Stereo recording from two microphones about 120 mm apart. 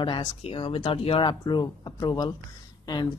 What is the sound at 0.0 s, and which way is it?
Speech, 45° left (ahead or behind).